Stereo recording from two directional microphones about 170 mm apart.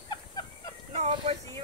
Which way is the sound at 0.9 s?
35° right (ahead or behind).